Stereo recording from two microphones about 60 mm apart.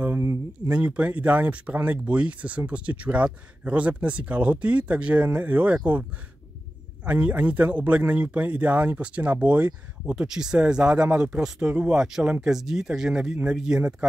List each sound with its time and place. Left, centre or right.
0.7 s speech: right
7.1 s speech: right
10.0 s speech: centre